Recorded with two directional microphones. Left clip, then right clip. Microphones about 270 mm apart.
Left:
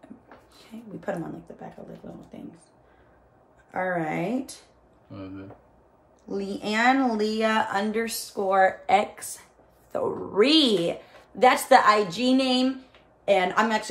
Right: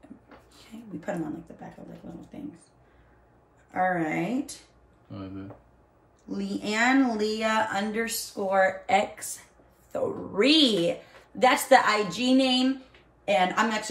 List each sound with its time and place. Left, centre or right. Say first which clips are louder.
2.1 s speech: left 1 dB; centre
3.7 s a woman's voice: right 1 dB; centre
6.2 s a woman's voice: left 2 dB; centre